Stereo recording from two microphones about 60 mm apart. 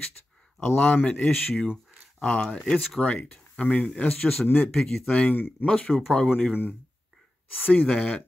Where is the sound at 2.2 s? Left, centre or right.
Centre.